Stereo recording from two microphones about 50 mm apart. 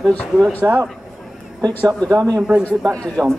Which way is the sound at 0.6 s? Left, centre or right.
Right.